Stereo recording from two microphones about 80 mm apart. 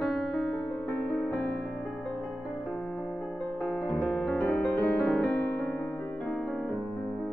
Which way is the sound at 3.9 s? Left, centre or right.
Centre.